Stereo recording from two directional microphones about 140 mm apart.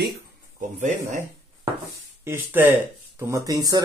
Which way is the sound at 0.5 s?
60° right (ahead or behind).